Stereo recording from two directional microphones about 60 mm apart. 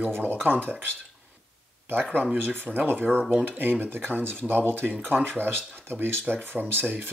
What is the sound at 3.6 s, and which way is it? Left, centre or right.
Speech, right.